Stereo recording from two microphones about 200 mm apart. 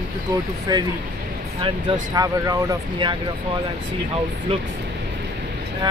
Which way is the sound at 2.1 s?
15° right (ahead or behind).